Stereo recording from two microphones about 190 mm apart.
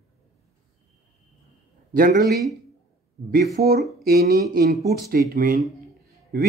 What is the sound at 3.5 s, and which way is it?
Speech, 55° right (ahead or behind).